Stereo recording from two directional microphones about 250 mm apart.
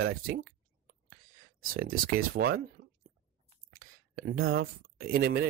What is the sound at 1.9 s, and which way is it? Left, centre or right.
Speech, right.